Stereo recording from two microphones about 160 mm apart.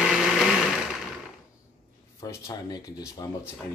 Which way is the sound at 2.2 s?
25° left (ahead or behind).